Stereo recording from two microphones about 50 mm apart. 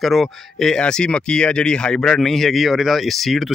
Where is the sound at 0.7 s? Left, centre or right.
Centre.